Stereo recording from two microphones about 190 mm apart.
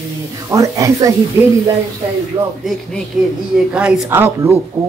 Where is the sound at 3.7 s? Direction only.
5° right (ahead or behind).